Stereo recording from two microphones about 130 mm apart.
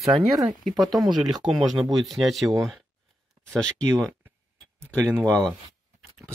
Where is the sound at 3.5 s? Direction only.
5° left (ahead or behind).